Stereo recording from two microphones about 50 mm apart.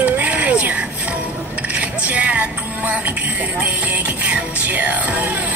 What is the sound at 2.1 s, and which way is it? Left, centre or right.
Music, right.